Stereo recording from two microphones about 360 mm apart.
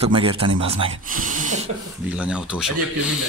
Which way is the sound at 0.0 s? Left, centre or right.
Centre.